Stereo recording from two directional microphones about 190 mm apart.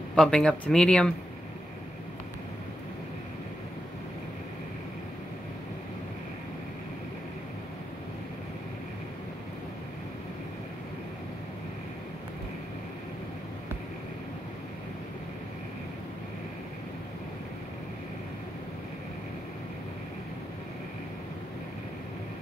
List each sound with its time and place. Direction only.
0.1 s speech: 5° left (ahead or behind)